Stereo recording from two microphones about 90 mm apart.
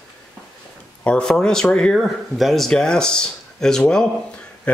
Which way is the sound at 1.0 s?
10° left (ahead or behind).